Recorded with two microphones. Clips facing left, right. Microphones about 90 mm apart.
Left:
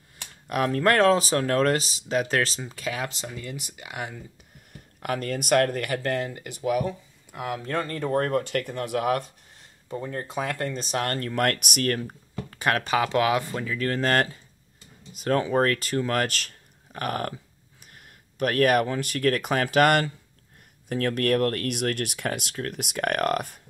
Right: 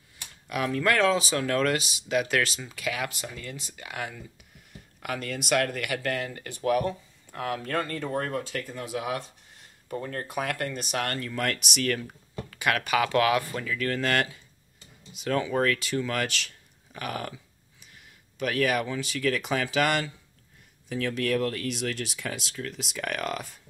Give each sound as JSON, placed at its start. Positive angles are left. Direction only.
{"t": 0.5, "sound": "speech", "side_deg": 45}
{"t": 5.0, "sound": "speech", "side_deg": 45}
{"t": 7.3, "sound": "speech", "side_deg": 20}
{"t": 8.1, "sound": "speech", "side_deg": 50}
{"t": 9.8, "sound": "speech", "side_deg": 15}
{"t": 11.1, "sound": "speech", "side_deg": 55}
{"t": 12.0, "sound": "speech", "side_deg": 30}